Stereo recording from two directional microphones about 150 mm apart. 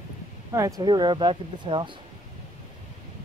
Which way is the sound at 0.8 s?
30° right (ahead or behind).